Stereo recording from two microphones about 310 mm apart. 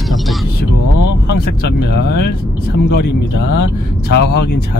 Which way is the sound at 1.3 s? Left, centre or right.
Left.